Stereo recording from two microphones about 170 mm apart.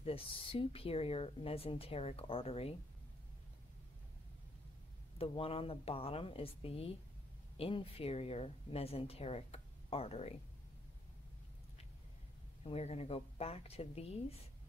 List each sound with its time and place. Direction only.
0.0 s a woman's voice: 35° left (ahead or behind)
5.2 s a woman's voice: 35° left (ahead or behind)
12.6 s a woman's voice: 40° left (ahead or behind)